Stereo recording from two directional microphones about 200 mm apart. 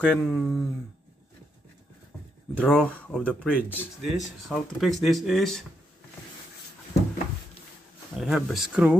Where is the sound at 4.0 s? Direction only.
Centre (ahead or behind).